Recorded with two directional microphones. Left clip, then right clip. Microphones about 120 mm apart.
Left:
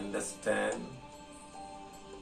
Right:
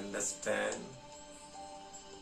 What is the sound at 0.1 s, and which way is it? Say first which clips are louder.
Speech: left 3 dB; 20° right (ahead or behind).